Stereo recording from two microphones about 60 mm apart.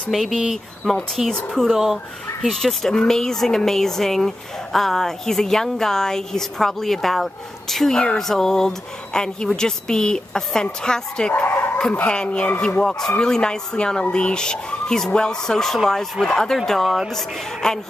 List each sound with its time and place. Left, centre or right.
0.1 s speech: centre
1.3 s speech: centre
11.4 s speech: left
11.9 s speech: centre
13.2 s speech: centre